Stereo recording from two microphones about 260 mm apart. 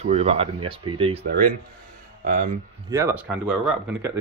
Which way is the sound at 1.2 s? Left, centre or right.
Right.